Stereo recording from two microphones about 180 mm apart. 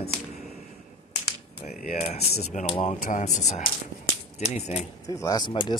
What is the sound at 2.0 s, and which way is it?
Speech, 35° left (ahead or behind).